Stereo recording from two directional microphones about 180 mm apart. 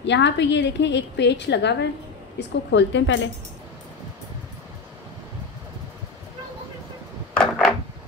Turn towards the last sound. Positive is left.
turn(degrees=5)  # may be behind; listen again after turning